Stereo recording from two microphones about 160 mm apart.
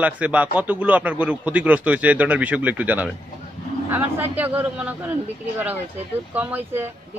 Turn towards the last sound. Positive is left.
turn(degrees=-10)  # may be behind; listen again after turning